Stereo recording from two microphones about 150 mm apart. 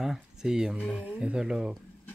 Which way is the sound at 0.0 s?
5° right (ahead or behind).